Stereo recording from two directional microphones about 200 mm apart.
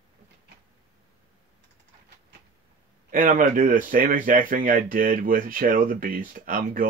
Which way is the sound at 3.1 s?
45° right (ahead or behind).